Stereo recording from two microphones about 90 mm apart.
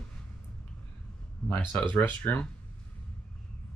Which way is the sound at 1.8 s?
20° left (ahead or behind).